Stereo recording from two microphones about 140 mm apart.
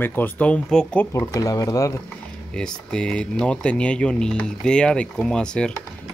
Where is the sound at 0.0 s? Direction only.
15° left (ahead or behind).